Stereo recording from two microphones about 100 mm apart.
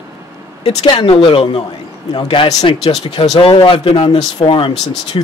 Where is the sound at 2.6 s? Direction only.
90° left.